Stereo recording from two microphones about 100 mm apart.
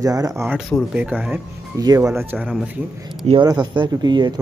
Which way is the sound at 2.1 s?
20° right (ahead or behind).